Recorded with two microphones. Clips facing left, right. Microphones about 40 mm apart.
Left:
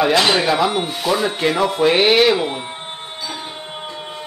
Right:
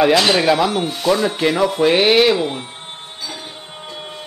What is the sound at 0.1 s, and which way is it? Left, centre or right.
Speech, centre.